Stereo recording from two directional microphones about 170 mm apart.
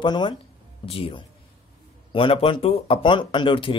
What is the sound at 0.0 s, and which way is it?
Speech, 25° left (ahead or behind).